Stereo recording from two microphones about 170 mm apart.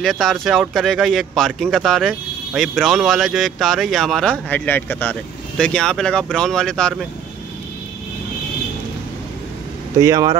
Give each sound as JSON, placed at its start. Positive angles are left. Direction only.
{"t": 0.0, "sound": "speech", "side_deg": 0}
{"t": 9.9, "sound": "speech", "side_deg": -20}